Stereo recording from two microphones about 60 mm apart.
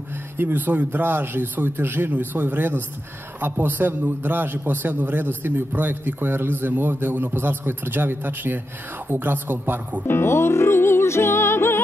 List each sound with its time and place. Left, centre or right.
0.4 s a man's voice: right
10.0 s music: left